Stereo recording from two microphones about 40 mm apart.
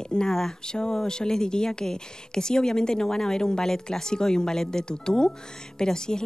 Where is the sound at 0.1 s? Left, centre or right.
Centre.